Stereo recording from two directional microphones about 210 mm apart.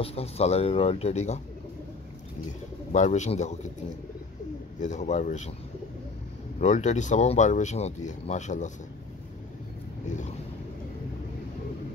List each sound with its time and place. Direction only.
0.0 s speech: 30° left (ahead or behind)
2.9 s speech: 35° left (ahead or behind)
4.7 s speech: 35° left (ahead or behind)
6.6 s speech: 35° left (ahead or behind)